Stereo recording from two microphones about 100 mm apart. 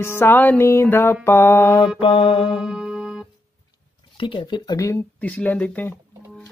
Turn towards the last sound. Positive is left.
turn(degrees=15)  # may be behind; listen again after turning